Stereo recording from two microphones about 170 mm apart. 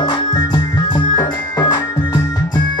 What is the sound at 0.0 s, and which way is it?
Music, 25° left (ahead or behind).